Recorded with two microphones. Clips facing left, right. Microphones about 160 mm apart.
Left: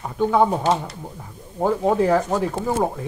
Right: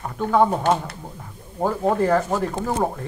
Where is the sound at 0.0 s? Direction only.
5° left (ahead or behind).